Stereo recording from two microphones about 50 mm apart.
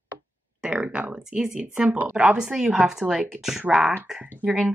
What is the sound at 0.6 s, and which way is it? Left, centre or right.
Speech, centre.